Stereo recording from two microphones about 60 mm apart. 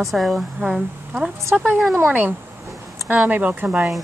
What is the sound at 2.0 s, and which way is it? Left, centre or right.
Speech, right.